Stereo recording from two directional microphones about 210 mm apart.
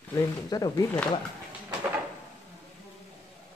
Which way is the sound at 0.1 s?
20° left (ahead or behind).